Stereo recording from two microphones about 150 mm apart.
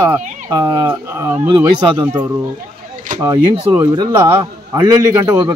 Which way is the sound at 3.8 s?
20° right (ahead or behind).